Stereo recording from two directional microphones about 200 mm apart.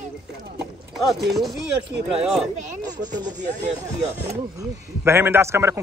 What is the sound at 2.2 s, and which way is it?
Speech, centre (ahead or behind).